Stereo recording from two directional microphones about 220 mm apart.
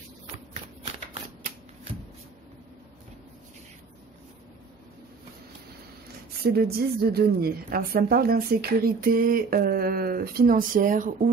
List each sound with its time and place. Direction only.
6.4 s a woman's voice: 45° right (ahead or behind)